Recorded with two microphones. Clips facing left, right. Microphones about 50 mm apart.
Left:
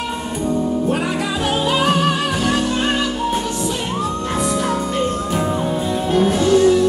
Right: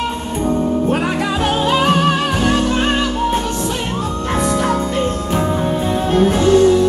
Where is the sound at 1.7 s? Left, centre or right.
Right.